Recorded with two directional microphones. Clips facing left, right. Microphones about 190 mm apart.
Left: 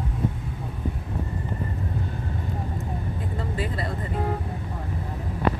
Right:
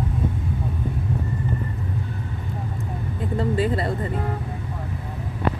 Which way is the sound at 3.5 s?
30° right (ahead or behind).